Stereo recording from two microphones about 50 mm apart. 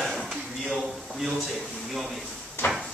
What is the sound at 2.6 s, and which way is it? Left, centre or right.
Drawer open or close, left.